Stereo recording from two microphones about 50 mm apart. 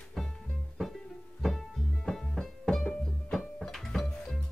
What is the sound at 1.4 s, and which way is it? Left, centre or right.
Music, centre.